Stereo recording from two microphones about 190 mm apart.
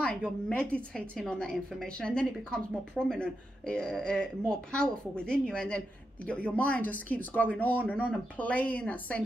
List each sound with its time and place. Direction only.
0.0 s a woman's voice: 5° left (ahead or behind)